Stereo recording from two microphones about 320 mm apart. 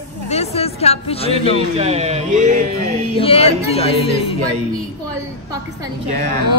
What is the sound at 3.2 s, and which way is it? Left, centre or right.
Speech, centre.